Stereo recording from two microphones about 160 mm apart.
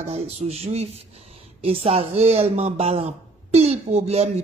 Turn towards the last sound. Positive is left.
turn(degrees=-40)  # may be behind; listen again after turning